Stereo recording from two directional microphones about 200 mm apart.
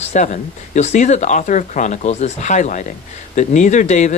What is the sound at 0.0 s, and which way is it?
Speech, 35° left (ahead or behind).